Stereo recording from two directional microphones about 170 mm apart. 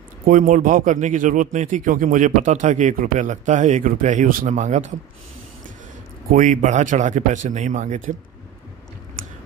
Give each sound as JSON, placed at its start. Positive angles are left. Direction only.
{"t": 0.2, "sound": "speech", "side_deg": -50}
{"t": 6.3, "sound": "speech", "side_deg": -45}